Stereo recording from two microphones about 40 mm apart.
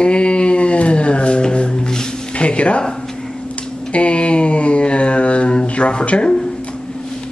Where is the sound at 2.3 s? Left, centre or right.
Left.